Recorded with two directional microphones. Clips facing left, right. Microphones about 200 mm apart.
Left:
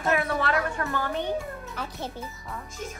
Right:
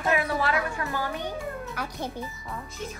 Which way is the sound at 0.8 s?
50° left (ahead or behind).